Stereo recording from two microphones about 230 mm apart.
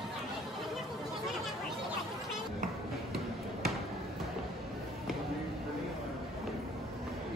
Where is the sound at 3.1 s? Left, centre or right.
Centre.